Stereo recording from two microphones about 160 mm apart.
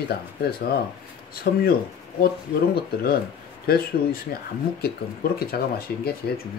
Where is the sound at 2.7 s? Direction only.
75° left (ahead or behind).